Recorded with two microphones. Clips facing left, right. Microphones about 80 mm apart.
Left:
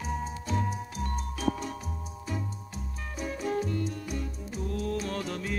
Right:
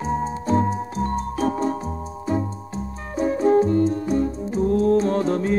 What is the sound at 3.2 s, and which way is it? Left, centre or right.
Music, right.